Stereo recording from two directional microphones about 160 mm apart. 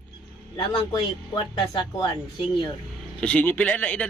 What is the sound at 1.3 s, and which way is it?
Speech, 30° left (ahead or behind).